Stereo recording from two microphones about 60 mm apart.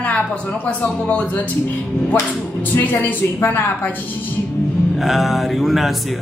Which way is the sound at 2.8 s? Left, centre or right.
Left.